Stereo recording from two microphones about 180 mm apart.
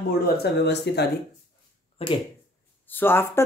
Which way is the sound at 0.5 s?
70° left (ahead or behind).